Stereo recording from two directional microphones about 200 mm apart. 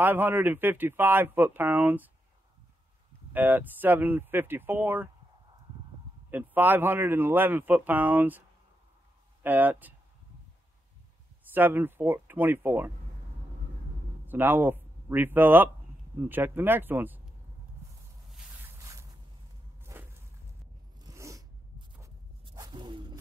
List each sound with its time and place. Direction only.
0.0 s speech: 10° right (ahead or behind)
3.3 s speech: 10° right (ahead or behind)
6.3 s speech: 10° right (ahead or behind)
11.5 s speech: 10° right (ahead or behind)
14.2 s speech: 10° right (ahead or behind)
18.3 s zipper: 15° right (ahead or behind)
19.8 s walk: 10° right (ahead or behind)
21.0 s zipper: 15° right (ahead or behind)